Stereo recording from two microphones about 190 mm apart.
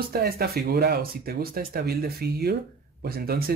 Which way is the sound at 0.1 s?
55° right (ahead or behind).